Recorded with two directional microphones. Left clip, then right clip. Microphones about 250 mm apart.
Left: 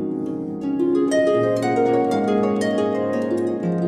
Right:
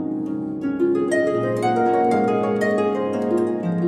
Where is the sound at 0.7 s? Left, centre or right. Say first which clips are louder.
Left 1 dB; left.